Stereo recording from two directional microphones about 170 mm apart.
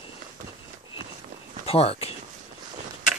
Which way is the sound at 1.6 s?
35° left (ahead or behind).